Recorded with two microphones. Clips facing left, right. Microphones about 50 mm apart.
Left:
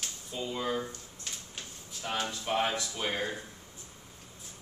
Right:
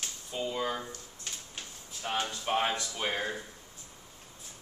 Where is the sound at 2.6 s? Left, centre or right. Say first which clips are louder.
Even; centre.